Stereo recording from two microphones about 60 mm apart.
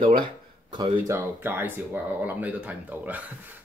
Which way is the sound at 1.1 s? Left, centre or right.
Right.